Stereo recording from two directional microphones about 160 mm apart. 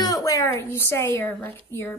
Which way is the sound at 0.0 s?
20° left (ahead or behind).